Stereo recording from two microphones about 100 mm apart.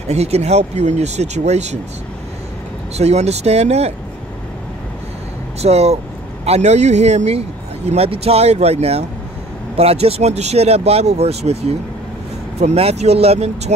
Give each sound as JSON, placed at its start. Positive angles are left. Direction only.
{"t": 0.1, "sound": "a man's voice", "side_deg": -90}
{"t": 3.0, "sound": "a man's voice", "side_deg": -90}
{"t": 5.6, "sound": "a man's voice", "side_deg": -90}
{"t": 12.5, "sound": "a man's voice", "side_deg": -90}